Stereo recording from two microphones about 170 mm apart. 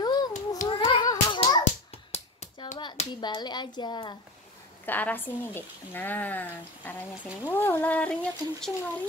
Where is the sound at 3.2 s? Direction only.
25° left (ahead or behind).